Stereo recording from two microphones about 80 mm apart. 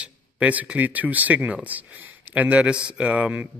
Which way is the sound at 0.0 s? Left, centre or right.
Centre.